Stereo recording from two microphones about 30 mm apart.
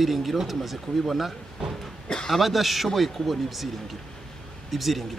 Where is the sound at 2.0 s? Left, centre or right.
Left.